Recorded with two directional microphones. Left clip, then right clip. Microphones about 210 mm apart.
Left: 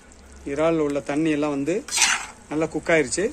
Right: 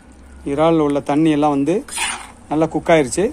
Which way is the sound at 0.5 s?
35° right (ahead or behind).